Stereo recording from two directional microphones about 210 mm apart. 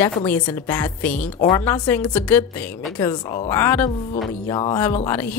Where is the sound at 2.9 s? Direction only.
20° left (ahead or behind).